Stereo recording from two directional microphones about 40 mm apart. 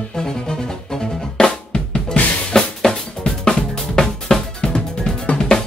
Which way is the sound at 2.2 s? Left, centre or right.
Left.